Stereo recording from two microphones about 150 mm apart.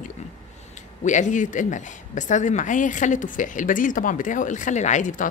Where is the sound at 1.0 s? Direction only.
55° left (ahead or behind).